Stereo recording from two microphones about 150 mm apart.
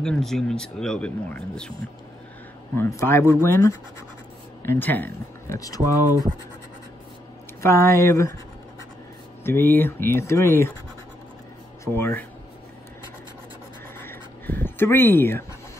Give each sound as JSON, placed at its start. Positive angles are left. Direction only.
{"t": 0.0, "sound": "speech", "side_deg": 5}
{"t": 2.7, "sound": "speech", "side_deg": 15}
{"t": 5.8, "sound": "speech", "side_deg": -20}
{"t": 7.6, "sound": "speech", "side_deg": 20}
{"t": 9.4, "sound": "speech", "side_deg": 15}
{"t": 11.8, "sound": "speech", "side_deg": 15}
{"t": 13.9, "sound": "writing", "side_deg": 15}